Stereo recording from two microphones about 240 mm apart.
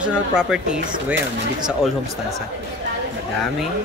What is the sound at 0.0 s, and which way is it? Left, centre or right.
Speech, centre.